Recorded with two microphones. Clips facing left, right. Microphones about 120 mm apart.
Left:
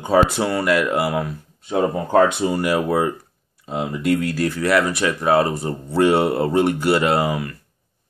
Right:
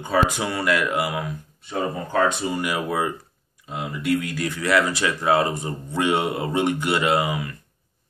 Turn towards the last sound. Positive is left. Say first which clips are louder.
# left 2 dB
turn(degrees=35)  # may be behind; listen again after turning